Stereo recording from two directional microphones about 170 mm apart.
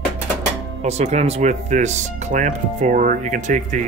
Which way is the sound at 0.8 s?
40° right (ahead or behind).